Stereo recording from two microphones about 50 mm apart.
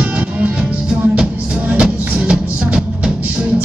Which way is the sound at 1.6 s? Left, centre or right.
Right.